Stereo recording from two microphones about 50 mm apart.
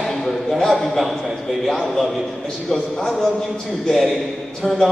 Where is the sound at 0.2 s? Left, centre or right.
Centre.